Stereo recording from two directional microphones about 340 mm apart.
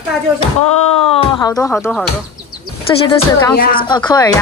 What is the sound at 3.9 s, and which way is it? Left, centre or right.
Speech, centre.